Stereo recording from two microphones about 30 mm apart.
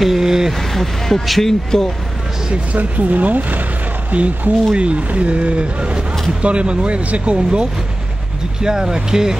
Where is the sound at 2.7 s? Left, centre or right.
Right.